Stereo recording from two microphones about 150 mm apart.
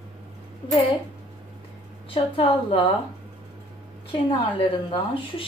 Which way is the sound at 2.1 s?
35° left (ahead or behind).